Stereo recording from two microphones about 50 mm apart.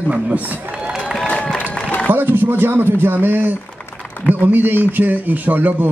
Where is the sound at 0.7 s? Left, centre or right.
Centre.